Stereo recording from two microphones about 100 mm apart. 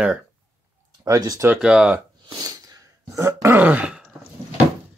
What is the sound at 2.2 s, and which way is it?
Throat clearing, 40° right (ahead or behind).